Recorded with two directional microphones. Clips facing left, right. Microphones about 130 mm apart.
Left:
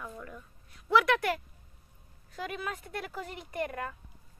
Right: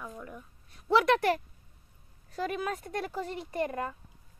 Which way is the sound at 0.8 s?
30° right (ahead or behind).